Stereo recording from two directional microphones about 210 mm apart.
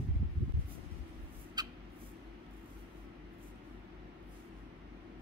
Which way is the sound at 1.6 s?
20° right (ahead or behind).